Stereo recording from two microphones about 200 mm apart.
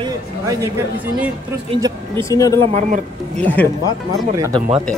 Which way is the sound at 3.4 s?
10° left (ahead or behind).